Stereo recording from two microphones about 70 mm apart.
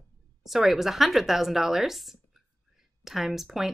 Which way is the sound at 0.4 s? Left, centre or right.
Centre.